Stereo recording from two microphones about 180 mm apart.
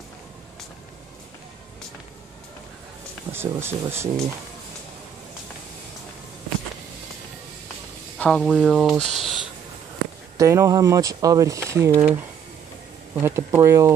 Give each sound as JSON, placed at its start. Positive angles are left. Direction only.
{"t": 3.3, "sound": "speech", "side_deg": -15}
{"t": 8.2, "sound": "speech", "side_deg": 0}
{"t": 10.3, "sound": "speech", "side_deg": -15}